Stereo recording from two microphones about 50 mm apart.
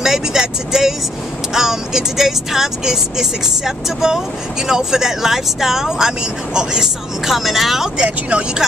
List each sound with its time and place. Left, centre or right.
0.0 s speech: centre
8.3 s speech: right